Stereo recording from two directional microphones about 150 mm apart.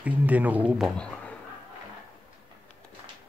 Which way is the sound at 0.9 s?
5° left (ahead or behind).